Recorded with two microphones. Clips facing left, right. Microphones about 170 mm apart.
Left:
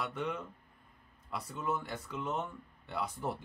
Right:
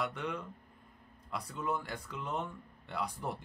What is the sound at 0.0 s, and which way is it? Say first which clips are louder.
Speech: even; 5° left (ahead or behind).